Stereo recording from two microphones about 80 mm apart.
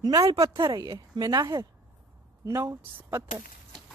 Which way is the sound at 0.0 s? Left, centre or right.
Right.